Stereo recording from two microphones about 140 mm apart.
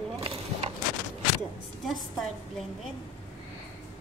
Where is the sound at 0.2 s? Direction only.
45° right (ahead or behind).